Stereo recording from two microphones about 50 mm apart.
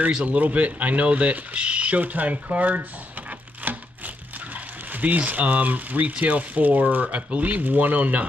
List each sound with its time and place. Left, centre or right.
0.1 s speech: right
3.7 s crumpling: right
4.9 s speech: right